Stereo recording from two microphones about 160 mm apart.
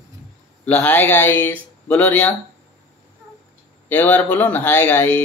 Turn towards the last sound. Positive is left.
turn(degrees=10)  # may be behind; listen again after turning